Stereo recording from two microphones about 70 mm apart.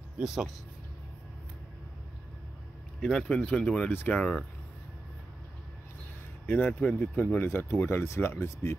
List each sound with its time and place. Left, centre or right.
0.2 s speech: centre
3.0 s speech: centre
3.9 s speech: left
4.2 s speech: centre
6.4 s speech: left